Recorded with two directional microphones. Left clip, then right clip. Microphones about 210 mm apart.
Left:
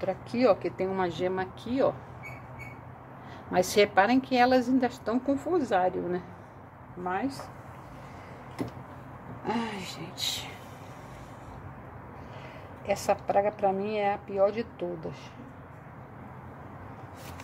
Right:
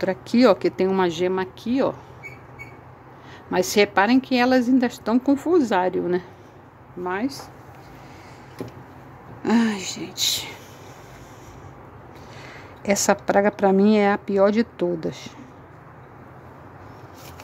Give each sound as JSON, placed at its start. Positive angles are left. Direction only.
{"t": 0.0, "sound": "speech", "side_deg": -45}
{"t": 3.5, "sound": "a woman's voice", "side_deg": -25}
{"t": 9.4, "sound": "a woman's voice", "side_deg": -55}
{"t": 12.8, "sound": "a woman's voice", "side_deg": -45}